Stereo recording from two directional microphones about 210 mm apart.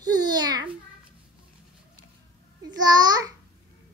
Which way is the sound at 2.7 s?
20° right (ahead or behind).